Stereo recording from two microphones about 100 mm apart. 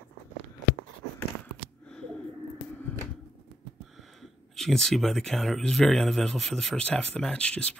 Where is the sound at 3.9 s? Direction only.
Centre (ahead or behind).